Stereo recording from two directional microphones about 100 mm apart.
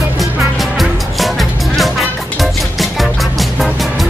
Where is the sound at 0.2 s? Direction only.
Centre (ahead or behind).